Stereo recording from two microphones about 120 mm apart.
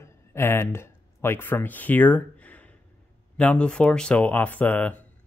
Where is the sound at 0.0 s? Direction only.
20° left (ahead or behind).